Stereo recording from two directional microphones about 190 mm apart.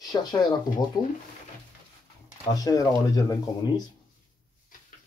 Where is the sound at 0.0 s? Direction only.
20° left (ahead or behind).